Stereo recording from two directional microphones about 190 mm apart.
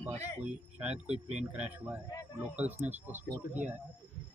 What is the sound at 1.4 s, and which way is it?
Speech, 5° right (ahead or behind).